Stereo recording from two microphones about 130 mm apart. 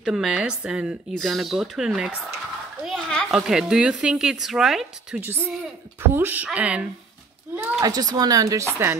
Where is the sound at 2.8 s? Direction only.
5° left (ahead or behind).